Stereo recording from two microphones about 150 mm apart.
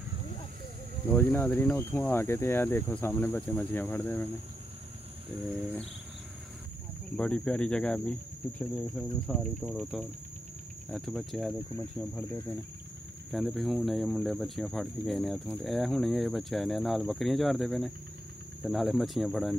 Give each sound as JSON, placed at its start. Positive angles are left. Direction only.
{"t": 1.0, "sound": "speech", "side_deg": 15}
{"t": 7.2, "sound": "speech", "side_deg": 5}
{"t": 12.2, "sound": "speech", "side_deg": 15}
{"t": 13.3, "sound": "speech", "side_deg": 0}